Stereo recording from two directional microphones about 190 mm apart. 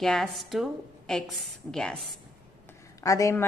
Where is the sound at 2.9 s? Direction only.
15° left (ahead or behind).